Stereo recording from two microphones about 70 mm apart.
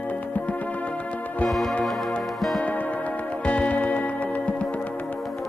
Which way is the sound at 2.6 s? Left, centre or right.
Left.